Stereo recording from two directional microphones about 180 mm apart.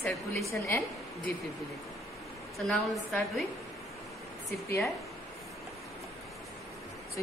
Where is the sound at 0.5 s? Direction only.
15° left (ahead or behind).